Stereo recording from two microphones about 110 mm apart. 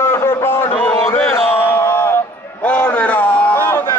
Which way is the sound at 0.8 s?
20° left (ahead or behind).